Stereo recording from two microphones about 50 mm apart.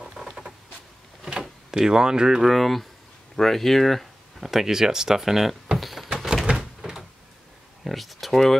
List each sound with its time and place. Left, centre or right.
0.0 s a sound: centre
1.2 s power windows: centre
2.4 s speech: centre
5.8 s a sound: centre
6.1 s door: centre
7.8 s speech: centre